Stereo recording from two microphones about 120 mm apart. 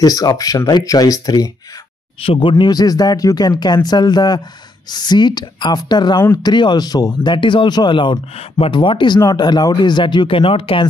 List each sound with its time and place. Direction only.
0.0 s speech: 30° left (ahead or behind)
2.2 s speech: 50° left (ahead or behind)
2.6 s speech: 35° left (ahead or behind)
7.3 s speech: 45° left (ahead or behind)